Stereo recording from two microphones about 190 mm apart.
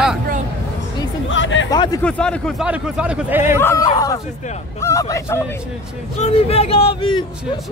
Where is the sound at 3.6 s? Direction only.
15° left (ahead or behind).